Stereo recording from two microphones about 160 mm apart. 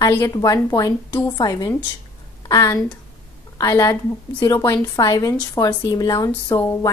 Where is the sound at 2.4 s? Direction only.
20° left (ahead or behind).